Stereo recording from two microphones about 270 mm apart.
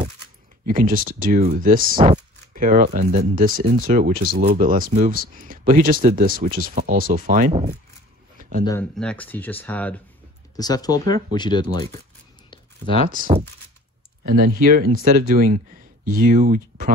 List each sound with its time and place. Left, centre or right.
0.7 s speech: right
8.4 s a sound: right
8.9 s speech: centre
13.1 s speech: right